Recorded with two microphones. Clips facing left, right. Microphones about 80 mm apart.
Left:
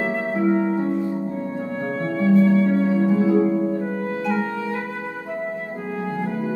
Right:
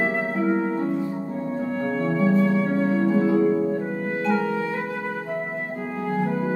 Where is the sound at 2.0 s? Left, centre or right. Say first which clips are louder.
Left 4 dB; centre.